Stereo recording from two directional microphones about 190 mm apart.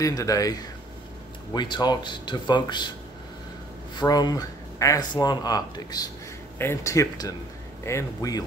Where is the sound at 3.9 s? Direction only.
20° left (ahead or behind).